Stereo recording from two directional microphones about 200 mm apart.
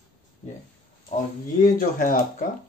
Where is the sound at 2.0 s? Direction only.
45° left (ahead or behind).